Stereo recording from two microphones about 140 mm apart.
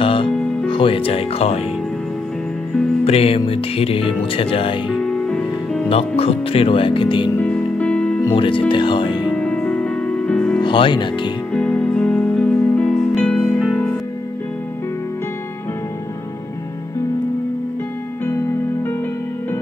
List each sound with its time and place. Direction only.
0.0 s music: 40° left (ahead or behind)
0.7 s speech: 40° left (ahead or behind)
3.1 s speech: 45° left (ahead or behind)
4.8 s music: centre (ahead or behind)
5.9 s speech: 45° left (ahead or behind)
7.3 s music: 5° left (ahead or behind)
8.4 s speech: 35° left (ahead or behind)
9.3 s music: 5° left (ahead or behind)
10.6 s speech: 35° left (ahead or behind)
11.5 s music: 5° left (ahead or behind)
18.2 s music: 15° left (ahead or behind)